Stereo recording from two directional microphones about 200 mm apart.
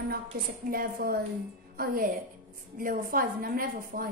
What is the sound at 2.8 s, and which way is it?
A woman's voice, 45° right (ahead or behind).